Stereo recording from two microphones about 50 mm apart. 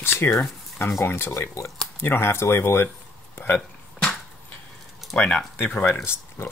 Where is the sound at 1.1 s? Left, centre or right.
Left.